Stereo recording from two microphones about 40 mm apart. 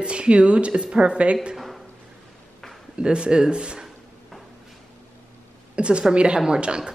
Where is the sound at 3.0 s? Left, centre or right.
Right.